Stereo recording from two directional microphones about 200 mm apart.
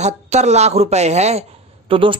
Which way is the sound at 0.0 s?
35° right (ahead or behind).